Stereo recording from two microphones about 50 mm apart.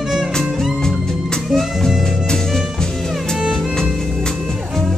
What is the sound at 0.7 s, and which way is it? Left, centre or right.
Music, centre.